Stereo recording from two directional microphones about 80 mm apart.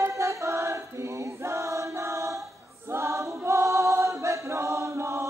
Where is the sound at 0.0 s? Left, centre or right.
Right.